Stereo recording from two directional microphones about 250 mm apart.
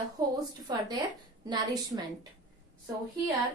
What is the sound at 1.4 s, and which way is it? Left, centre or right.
Speech, centre.